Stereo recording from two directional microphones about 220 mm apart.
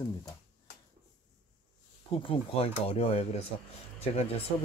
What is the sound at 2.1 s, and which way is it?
Speech, 25° left (ahead or behind).